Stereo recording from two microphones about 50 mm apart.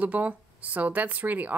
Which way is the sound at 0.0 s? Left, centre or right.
Right.